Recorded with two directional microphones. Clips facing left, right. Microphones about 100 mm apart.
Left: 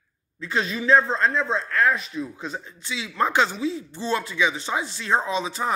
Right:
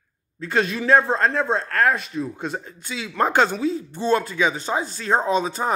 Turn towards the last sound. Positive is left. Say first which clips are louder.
# right 4 dB
turn(degrees=-45)  # may be behind; listen again after turning